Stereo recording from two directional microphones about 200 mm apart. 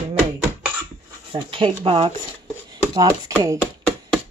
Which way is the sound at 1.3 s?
25° right (ahead or behind).